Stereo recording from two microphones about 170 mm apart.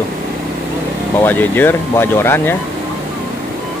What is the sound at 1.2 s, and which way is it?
Speech, 10° left (ahead or behind).